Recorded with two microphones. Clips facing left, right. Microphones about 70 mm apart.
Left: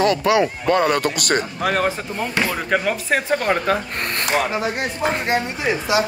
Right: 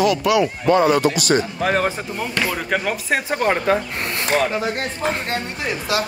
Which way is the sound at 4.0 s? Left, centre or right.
Left.